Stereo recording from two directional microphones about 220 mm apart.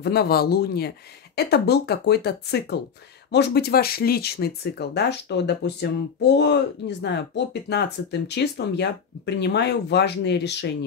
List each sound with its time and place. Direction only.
0.0 s speech: 45° left (ahead or behind)